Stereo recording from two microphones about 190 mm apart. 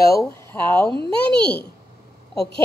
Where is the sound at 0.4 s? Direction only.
10° left (ahead or behind).